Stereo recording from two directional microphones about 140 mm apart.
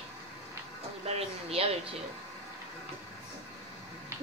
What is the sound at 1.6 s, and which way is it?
Speech, 45° right (ahead or behind).